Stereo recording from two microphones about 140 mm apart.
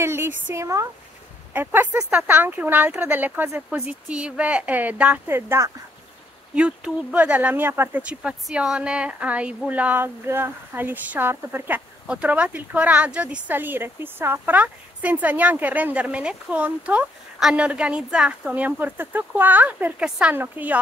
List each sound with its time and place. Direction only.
0.0 s a woman's voice: 15° right (ahead or behind)